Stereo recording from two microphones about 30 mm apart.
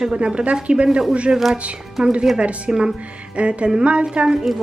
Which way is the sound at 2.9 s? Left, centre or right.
Right.